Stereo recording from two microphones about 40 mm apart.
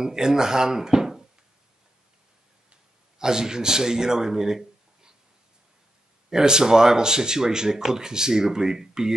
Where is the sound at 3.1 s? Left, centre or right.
Centre.